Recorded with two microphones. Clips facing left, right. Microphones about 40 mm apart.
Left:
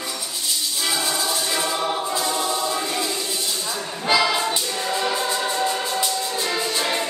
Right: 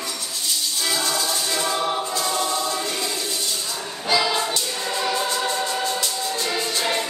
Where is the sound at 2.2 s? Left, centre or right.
Centre.